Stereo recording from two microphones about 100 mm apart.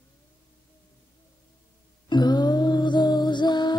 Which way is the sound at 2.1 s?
45° left (ahead or behind).